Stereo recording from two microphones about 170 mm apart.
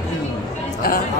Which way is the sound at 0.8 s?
60° left (ahead or behind).